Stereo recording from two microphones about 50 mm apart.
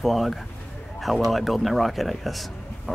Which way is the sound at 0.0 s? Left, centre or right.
Centre.